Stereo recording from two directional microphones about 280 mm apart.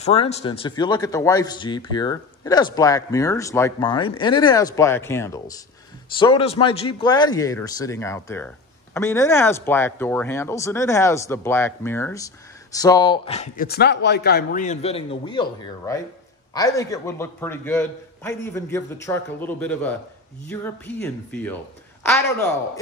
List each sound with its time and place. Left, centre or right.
0.0 s speech: left; by 21.5 s centre